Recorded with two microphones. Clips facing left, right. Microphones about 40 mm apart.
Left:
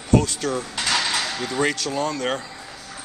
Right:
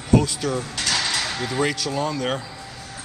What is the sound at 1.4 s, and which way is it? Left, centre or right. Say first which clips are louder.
Speech: even; centre.